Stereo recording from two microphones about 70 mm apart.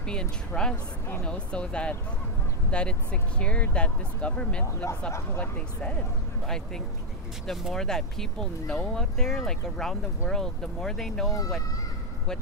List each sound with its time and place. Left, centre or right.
0.0 s speech: centre
6.4 s speech: centre
11.2 s speech: left